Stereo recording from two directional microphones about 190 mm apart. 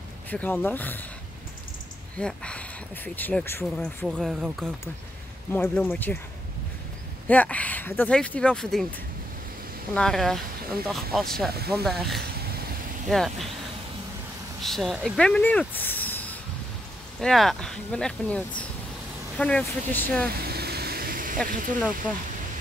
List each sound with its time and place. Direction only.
0.3 s speech: 10° left (ahead or behind)
2.1 s speech: 5° left (ahead or behind)
7.2 s speech: 5° left (ahead or behind)
9.9 s speech: centre (ahead or behind)
14.6 s speech: centre (ahead or behind)
20.4 s vehicle: 55° right (ahead or behind)
21.5 s speech: 45° right (ahead or behind)